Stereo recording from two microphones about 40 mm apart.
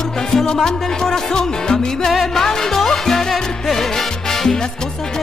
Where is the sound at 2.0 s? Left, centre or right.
Centre.